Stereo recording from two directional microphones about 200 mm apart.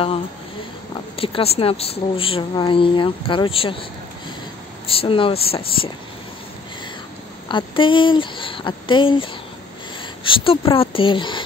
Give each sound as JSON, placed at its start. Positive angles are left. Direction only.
{"t": 1.1, "sound": "speech", "side_deg": 30}
{"t": 4.9, "sound": "speech", "side_deg": 25}
{"t": 7.4, "sound": "speech", "side_deg": 25}